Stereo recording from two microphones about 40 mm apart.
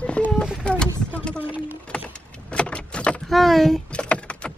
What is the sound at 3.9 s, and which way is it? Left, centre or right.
Vehicle, left.